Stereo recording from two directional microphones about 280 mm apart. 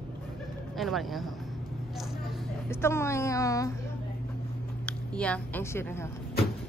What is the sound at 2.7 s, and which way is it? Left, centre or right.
Speech, centre.